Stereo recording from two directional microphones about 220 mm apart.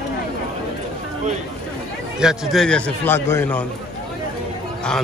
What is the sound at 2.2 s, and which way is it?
A man's voice, centre (ahead or behind).